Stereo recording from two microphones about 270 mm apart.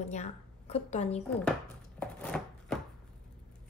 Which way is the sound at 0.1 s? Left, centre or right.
Left.